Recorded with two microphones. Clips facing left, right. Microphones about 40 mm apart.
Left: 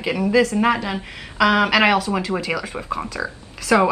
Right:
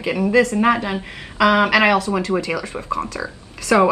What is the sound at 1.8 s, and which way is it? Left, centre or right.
Speech, centre.